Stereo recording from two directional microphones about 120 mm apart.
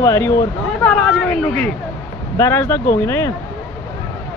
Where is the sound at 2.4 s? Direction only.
20° left (ahead or behind).